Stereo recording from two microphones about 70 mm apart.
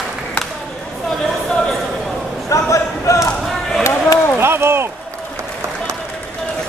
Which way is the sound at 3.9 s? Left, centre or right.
Left.